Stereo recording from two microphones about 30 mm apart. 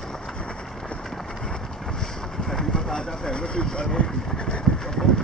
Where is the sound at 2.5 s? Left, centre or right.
Centre.